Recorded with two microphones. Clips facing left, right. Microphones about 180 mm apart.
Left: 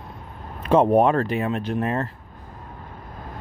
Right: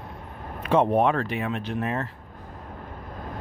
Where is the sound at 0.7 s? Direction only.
40° left (ahead or behind).